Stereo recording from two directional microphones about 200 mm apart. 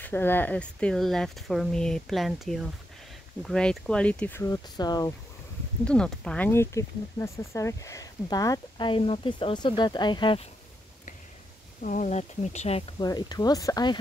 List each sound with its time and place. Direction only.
0.0 s speech: 10° left (ahead or behind)
5.9 s speech: 5° left (ahead or behind); by 10.4 s 25° left (ahead or behind)
11.8 s speech: 40° left (ahead or behind); by 13.9 s 20° left (ahead or behind)